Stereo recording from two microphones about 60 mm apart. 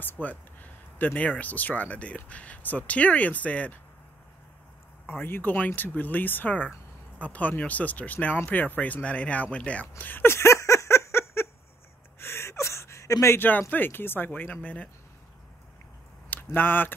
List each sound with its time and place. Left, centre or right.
0.0 s speech: left
5.0 s speech: left
10.3 s a sound: left
12.2 s gasp: left
13.4 s speech: left
16.3 s speech: left